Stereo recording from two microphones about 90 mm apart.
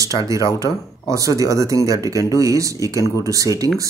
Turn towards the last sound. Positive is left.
turn(degrees=-40)  # may be behind; listen again after turning